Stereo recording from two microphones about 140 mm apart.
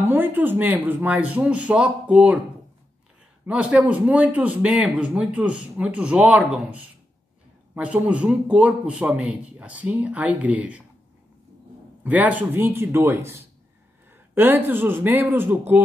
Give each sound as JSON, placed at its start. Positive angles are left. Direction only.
{"t": 0.0, "sound": "speech", "side_deg": -15}
{"t": 3.4, "sound": "speech", "side_deg": -10}
{"t": 12.0, "sound": "speech", "side_deg": -10}